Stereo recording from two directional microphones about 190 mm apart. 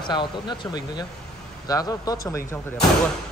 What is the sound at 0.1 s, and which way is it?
Speech, 25° left (ahead or behind).